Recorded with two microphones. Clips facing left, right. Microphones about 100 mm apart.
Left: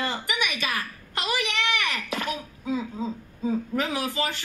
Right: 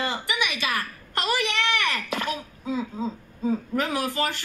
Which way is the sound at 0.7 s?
40° right (ahead or behind).